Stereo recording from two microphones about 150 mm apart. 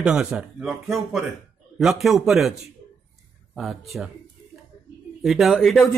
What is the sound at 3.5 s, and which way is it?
Speech, centre (ahead or behind).